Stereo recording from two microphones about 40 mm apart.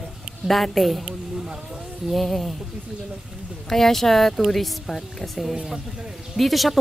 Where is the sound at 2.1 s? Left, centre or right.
Centre.